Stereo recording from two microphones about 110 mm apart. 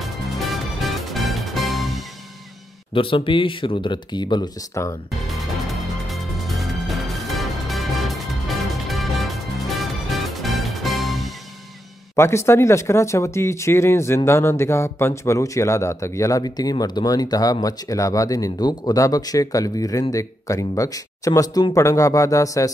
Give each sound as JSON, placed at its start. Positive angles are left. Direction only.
{"t": 0.0, "sound": "music", "side_deg": 0}
{"t": 2.9, "sound": "speech", "side_deg": 55}
{"t": 4.8, "sound": "speech", "side_deg": 25}
{"t": 5.1, "sound": "music", "side_deg": 0}
{"t": 12.2, "sound": "speech", "side_deg": 25}